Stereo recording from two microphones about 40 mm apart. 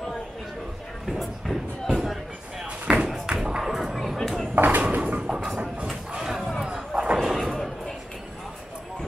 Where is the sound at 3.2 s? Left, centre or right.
Centre.